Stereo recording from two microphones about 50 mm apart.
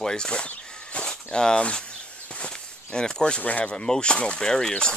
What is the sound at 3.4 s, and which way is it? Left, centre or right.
Speech, left.